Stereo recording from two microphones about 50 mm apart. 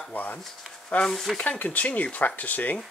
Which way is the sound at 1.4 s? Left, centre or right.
Left.